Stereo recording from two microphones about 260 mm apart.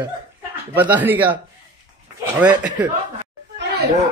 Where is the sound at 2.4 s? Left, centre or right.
Centre.